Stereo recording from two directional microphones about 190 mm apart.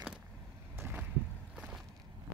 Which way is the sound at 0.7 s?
10° right (ahead or behind).